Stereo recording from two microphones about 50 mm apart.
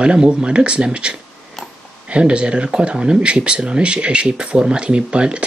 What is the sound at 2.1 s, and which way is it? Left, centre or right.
Speech, right.